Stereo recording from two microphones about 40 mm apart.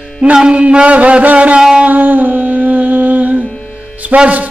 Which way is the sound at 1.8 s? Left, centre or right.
Right.